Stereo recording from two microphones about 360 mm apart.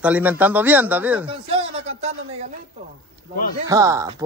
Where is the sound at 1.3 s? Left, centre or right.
Centre.